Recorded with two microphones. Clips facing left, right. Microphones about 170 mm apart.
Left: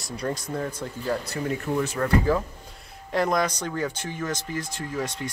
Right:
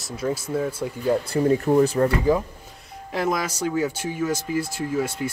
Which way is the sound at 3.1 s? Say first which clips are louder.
Left 1 dB; 5° right (ahead or behind).